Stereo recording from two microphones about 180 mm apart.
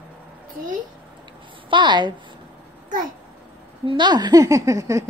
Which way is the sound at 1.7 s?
25° right (ahead or behind).